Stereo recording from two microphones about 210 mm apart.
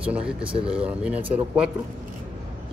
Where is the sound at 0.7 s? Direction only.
5° right (ahead or behind).